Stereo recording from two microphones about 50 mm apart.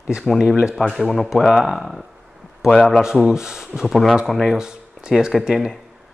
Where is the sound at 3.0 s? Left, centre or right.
Centre.